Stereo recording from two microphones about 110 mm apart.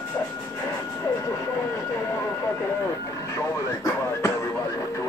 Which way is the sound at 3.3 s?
25° left (ahead or behind).